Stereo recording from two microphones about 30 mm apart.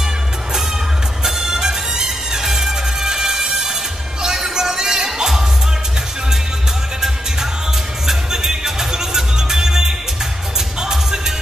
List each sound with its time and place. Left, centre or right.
1.2 s music: centre
8.1 s music: centre